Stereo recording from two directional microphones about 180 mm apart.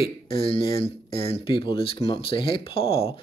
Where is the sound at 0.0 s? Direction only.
30° left (ahead or behind).